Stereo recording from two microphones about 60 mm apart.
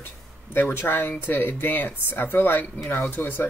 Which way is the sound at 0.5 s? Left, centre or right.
Left.